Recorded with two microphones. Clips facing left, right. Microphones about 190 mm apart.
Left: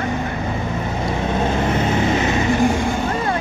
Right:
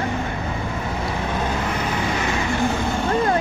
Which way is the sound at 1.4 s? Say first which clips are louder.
Left 5 dB; 25° left (ahead or behind).